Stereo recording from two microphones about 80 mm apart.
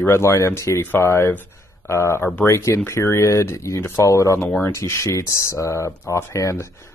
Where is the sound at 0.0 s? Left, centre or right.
Left.